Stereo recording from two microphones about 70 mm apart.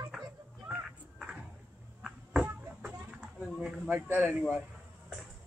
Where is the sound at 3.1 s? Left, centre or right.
Centre.